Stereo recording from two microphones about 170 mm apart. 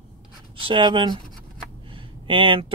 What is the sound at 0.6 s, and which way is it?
Speech, 30° right (ahead or behind).